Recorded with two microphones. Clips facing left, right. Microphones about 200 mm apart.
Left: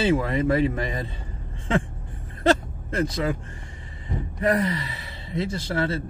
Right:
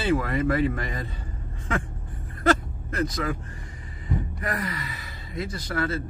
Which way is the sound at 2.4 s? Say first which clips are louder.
Left 2 dB; 25° left (ahead or behind).